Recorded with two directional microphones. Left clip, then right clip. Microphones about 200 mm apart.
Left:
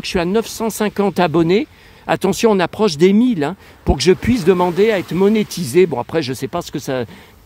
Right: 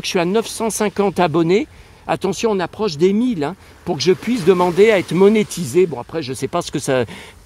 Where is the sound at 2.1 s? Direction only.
15° left (ahead or behind).